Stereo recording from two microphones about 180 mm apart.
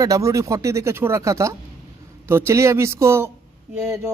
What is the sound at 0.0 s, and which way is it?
Speech, 20° right (ahead or behind).